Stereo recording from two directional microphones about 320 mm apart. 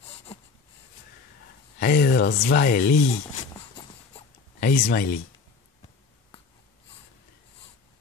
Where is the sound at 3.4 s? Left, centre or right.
Centre.